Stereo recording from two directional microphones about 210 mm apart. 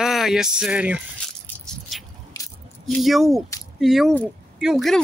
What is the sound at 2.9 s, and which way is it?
Speech, centre (ahead or behind).